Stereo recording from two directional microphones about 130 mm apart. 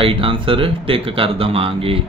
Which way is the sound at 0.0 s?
40° right (ahead or behind).